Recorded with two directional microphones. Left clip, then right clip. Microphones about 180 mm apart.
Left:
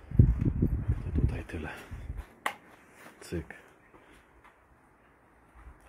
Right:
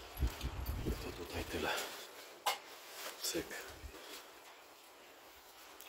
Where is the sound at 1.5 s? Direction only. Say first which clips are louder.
Right 3 dB; 10° right (ahead or behind).